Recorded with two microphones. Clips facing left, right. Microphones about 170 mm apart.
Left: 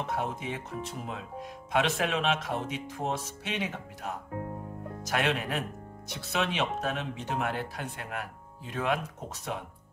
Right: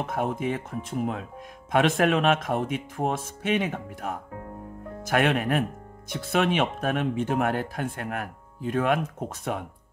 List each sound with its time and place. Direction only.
0.0 s speech: 50° right (ahead or behind)